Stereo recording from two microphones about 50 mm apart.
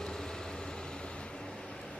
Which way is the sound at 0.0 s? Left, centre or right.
Centre.